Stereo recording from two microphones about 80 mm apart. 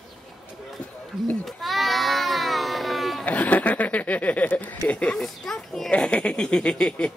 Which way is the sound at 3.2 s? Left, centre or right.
Centre.